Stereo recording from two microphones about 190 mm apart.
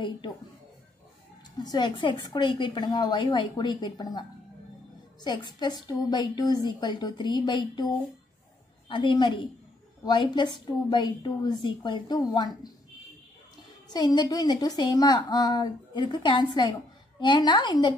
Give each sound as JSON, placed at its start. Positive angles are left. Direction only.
{"t": 1.6, "sound": "a woman's voice", "side_deg": 20}
{"t": 13.9, "sound": "a woman's voice", "side_deg": 20}